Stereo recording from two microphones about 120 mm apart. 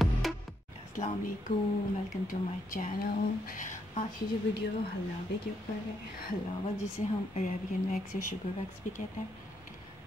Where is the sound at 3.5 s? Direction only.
90° left.